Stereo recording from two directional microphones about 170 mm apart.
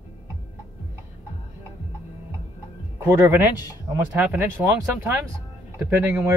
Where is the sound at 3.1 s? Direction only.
15° right (ahead or behind).